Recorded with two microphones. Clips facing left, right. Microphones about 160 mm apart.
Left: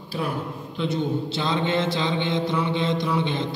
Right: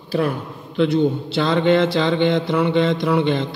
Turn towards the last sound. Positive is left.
turn(degrees=-60)  # may be behind; listen again after turning